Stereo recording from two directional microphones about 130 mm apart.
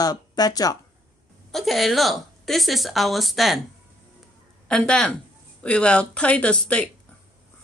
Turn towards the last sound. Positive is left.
turn(degrees=10)  # may be behind; listen again after turning